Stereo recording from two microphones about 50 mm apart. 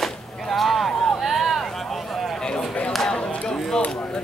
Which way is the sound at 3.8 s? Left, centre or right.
Left.